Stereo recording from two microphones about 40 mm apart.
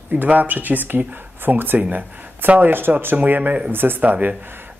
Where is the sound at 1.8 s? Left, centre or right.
Right.